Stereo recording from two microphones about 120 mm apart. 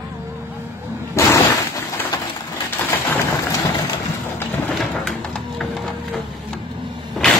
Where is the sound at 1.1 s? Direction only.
30° left (ahead or behind).